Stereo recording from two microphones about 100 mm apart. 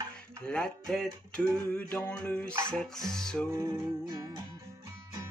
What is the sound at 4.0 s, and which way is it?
Music, 45° right (ahead or behind).